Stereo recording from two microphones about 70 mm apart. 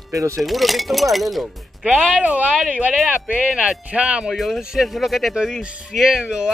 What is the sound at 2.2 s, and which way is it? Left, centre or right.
Speech, centre.